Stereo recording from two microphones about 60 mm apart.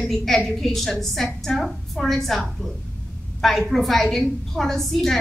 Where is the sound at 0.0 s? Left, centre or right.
Centre.